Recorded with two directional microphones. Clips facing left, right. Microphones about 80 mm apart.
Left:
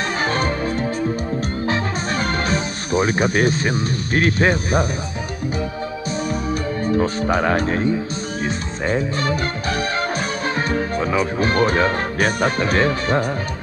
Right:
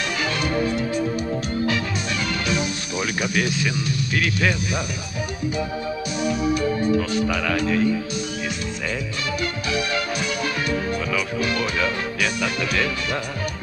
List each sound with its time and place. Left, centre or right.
0.2 s music: left
1.7 s music: left
7.0 s speech: left